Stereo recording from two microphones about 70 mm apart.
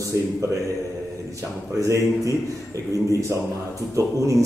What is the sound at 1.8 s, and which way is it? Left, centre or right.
Speech, right.